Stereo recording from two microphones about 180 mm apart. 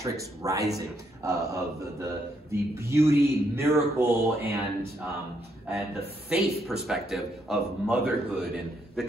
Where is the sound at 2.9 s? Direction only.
15° right (ahead or behind).